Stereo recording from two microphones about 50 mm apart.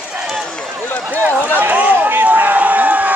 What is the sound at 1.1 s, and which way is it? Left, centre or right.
Run, right.